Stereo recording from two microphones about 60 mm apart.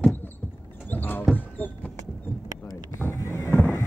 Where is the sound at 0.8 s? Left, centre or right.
Left.